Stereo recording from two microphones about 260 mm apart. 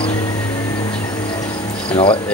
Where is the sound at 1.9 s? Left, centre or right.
Centre.